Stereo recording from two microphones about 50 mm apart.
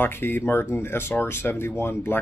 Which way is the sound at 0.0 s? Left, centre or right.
Left.